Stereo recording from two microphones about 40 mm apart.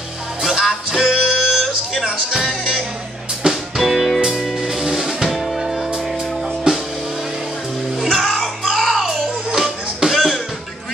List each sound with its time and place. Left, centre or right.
0.4 s music: centre
6.7 s music: right
8.2 s music: centre